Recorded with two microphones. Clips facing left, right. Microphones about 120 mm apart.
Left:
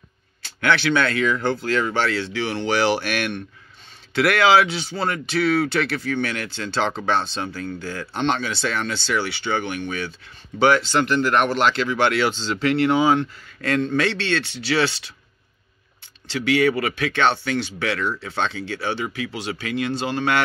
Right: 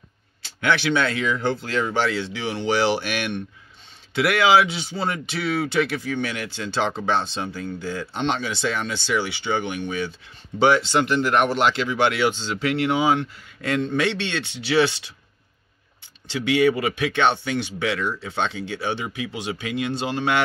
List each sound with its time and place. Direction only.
0.4 s speech: 15° right (ahead or behind)
16.3 s speech: 20° right (ahead or behind)